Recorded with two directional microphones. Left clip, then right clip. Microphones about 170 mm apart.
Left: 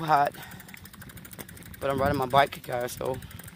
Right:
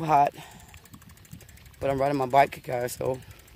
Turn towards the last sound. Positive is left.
turn(degrees=-25)  # may be behind; listen again after turning